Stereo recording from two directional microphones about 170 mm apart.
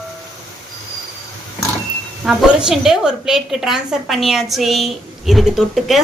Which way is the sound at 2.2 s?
5° right (ahead or behind).